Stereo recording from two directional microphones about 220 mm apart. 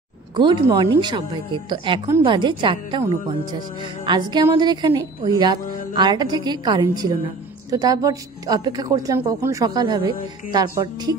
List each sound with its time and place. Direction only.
0.4 s a woman's voice: 20° right (ahead or behind)